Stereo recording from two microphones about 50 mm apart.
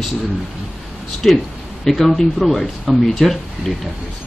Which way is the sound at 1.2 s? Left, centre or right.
Centre.